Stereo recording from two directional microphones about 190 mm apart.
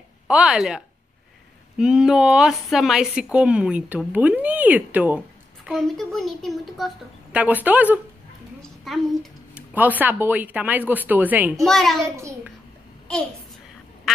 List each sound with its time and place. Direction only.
0.3 s a woman's voice: 5° right (ahead or behind)
11.6 s a woman's voice: centre (ahead or behind)